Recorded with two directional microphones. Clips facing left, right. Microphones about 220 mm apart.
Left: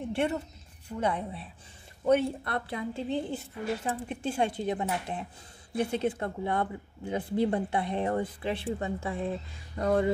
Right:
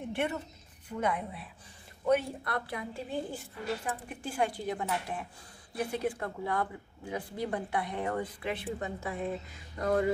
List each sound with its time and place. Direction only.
0.1 s a woman's voice: 30° left (ahead or behind)